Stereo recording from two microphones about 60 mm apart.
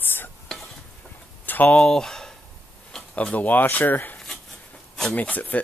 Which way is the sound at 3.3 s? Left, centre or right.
Left.